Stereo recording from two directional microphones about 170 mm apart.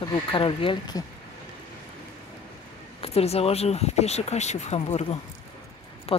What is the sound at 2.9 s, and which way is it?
Speech, 35° left (ahead or behind).